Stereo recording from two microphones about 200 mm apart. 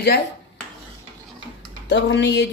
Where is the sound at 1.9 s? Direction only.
65° left (ahead or behind).